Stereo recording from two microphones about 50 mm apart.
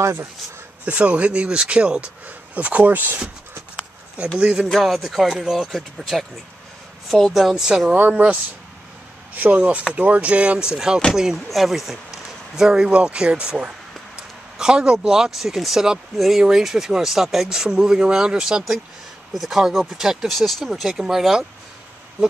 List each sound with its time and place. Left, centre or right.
0.8 s speech: right
4.4 s speech: centre
4.6 s speech: centre
8.1 s speech: right
19.3 s speech: centre
20.3 s speech: centre
20.6 s speech: centre